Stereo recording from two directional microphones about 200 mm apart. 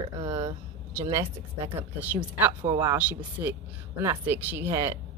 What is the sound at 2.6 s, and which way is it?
Speech, 25° right (ahead or behind).